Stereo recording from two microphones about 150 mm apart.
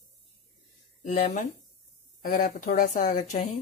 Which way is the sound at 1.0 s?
55° left (ahead or behind).